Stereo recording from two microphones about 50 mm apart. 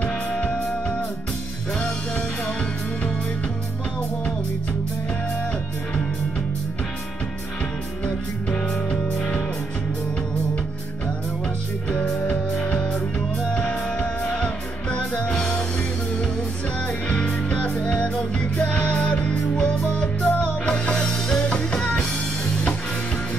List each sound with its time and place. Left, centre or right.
0.0 s music: left
8.0 s music: centre
13.9 s music: left
16.8 s music: left
20.6 s music: centre